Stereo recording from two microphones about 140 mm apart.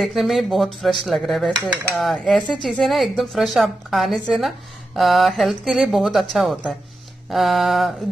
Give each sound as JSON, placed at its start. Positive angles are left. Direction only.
{"t": 0.0, "sound": "a woman's voice", "side_deg": 0}
{"t": 1.7, "sound": "cutlery", "side_deg": -15}
{"t": 2.0, "sound": "a woman's voice", "side_deg": 0}